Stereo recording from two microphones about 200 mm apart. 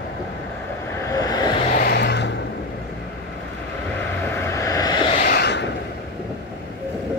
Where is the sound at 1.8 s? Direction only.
55° left (ahead or behind).